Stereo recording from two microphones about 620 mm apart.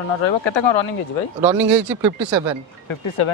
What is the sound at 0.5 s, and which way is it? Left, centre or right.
Speech, left.